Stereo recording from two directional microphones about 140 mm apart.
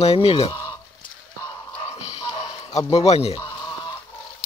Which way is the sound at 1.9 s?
50° left (ahead or behind).